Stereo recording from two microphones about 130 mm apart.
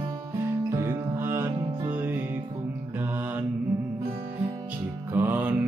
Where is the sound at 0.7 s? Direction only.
20° right (ahead or behind).